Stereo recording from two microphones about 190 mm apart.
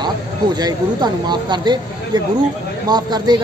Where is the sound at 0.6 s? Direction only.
20° right (ahead or behind).